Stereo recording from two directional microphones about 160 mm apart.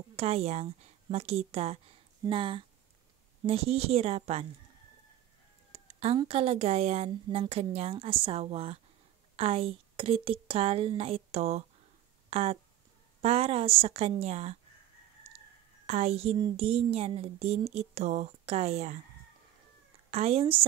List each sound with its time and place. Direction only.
0.1 s a woman's voice: 40° right (ahead or behind)
5.7 s a sound: 40° right (ahead or behind)
6.1 s speech: 35° right (ahead or behind)
15.9 s speech: 40° right (ahead or behind)
20.1 s speech: 40° right (ahead or behind)